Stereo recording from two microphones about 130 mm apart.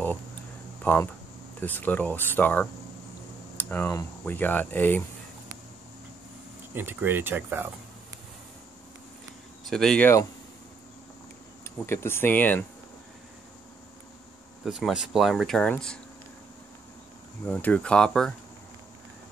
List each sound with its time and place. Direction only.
0.8 s speech: 15° left (ahead or behind)
3.5 s a sound: 15° left (ahead or behind)
4.2 s speech: 15° left (ahead or behind)
6.7 s speech: 15° right (ahead or behind)
9.7 s speech: 5° left (ahead or behind)
11.8 s speech: 20° left (ahead or behind)
14.6 s speech: centre (ahead or behind)
17.5 s speech: 10° left (ahead or behind)